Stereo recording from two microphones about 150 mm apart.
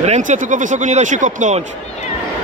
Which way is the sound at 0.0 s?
50° right (ahead or behind).